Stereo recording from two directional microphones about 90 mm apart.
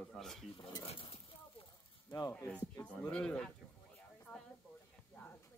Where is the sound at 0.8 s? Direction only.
85° left.